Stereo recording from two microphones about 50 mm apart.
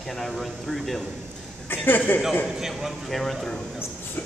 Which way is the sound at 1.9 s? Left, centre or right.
Left.